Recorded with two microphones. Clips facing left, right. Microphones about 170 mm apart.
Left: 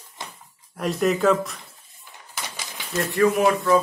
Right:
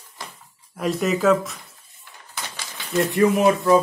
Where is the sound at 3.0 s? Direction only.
20° right (ahead or behind).